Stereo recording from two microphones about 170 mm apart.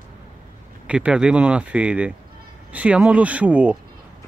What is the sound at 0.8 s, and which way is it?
Speech, 5° right (ahead or behind).